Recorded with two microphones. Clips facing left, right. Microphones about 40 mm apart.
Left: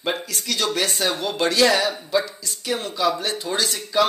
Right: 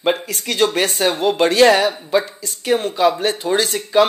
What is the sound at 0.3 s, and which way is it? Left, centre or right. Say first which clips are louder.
Speech: right 6 dB; right.